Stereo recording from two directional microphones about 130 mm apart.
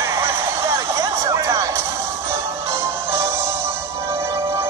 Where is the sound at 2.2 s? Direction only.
20° right (ahead or behind).